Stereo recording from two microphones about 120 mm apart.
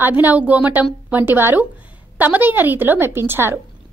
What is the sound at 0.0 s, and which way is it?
A woman's voice, 15° right (ahead or behind).